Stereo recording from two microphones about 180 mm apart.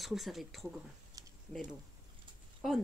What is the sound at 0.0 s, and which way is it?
Speech, centre (ahead or behind).